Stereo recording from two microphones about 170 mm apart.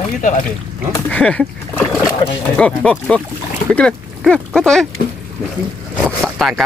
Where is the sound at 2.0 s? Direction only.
25° left (ahead or behind).